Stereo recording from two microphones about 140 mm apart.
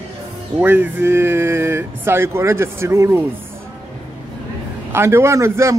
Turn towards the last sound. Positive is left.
turn(degrees=-20)  # may be behind; listen again after turning